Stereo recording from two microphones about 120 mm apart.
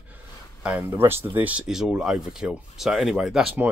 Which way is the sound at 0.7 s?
20° right (ahead or behind).